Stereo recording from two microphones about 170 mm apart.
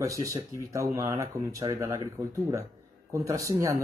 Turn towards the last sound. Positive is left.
turn(degrees=-20)  # may be behind; listen again after turning